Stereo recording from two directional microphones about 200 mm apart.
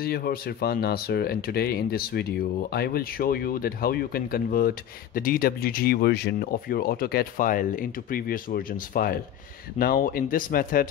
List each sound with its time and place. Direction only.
0.0 s speech: 50° left (ahead or behind)